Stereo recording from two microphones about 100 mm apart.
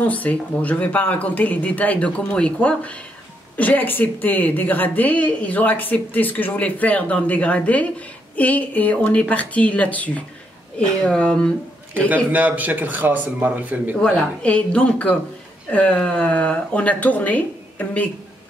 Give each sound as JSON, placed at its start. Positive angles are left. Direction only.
{"t": 0.0, "sound": "a woman's voice", "side_deg": 15}
{"t": 12.1, "sound": "a man's voice", "side_deg": -15}
{"t": 13.9, "sound": "a woman's voice", "side_deg": 10}